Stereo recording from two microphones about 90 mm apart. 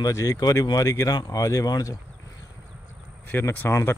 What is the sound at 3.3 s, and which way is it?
Speech, 20° left (ahead or behind).